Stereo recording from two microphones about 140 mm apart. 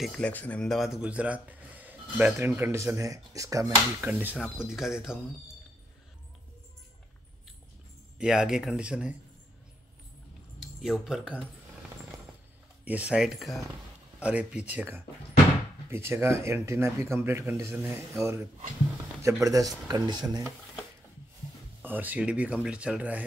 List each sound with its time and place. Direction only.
0.0 s speech: 10° left (ahead or behind); by 4.4 s 15° right (ahead or behind)
4.4 s speech: 5° right (ahead or behind)
8.2 s speech: 5° right (ahead or behind)
10.8 s speech: 5° right (ahead or behind)
12.8 s speech: 10° right (ahead or behind); by 20.4 s 30° right (ahead or behind)
21.8 s speech: 10° right (ahead or behind)